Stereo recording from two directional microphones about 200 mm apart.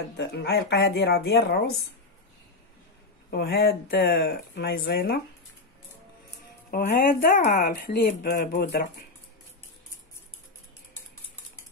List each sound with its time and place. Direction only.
0.2 s speech: 55° left (ahead or behind)
3.3 s speech: 55° left (ahead or behind)
6.7 s speech: 50° left (ahead or behind)